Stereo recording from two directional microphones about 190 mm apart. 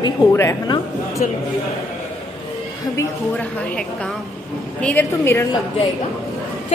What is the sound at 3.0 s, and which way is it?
A woman's voice, 10° left (ahead or behind).